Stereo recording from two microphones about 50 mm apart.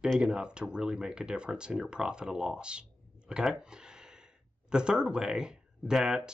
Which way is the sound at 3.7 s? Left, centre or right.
Centre.